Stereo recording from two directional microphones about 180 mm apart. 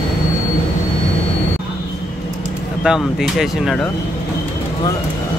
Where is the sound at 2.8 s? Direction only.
Centre (ahead or behind).